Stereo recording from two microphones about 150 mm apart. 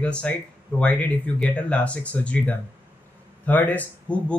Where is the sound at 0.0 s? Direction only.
5° left (ahead or behind).